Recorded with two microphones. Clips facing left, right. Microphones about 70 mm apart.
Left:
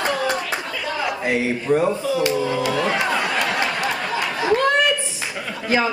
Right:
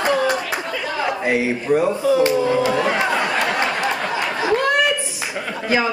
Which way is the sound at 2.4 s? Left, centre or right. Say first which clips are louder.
Right 4 dB; right.